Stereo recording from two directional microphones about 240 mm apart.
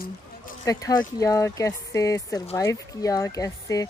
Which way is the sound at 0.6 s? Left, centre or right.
Centre.